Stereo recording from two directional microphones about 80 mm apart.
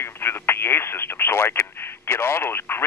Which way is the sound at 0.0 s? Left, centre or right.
Left.